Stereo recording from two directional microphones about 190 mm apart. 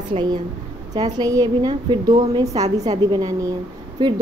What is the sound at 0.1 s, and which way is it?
A woman's voice, 25° right (ahead or behind).